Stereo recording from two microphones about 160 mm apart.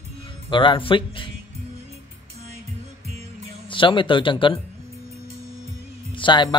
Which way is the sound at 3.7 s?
30° left (ahead or behind).